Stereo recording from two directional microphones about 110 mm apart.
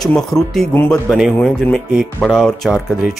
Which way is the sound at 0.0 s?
5° left (ahead or behind).